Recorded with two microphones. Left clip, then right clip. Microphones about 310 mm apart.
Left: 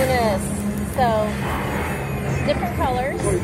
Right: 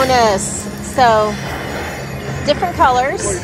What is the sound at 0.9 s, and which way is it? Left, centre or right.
Speech, right.